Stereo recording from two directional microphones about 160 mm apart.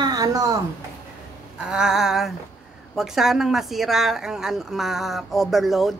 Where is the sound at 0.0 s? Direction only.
25° right (ahead or behind).